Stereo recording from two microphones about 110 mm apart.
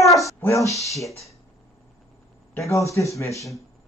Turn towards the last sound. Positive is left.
turn(degrees=25)  # may be behind; listen again after turning